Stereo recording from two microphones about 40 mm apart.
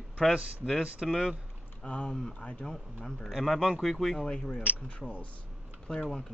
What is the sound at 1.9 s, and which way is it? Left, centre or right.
Speech, left.